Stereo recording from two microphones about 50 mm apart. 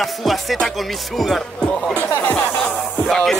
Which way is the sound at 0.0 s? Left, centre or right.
Centre.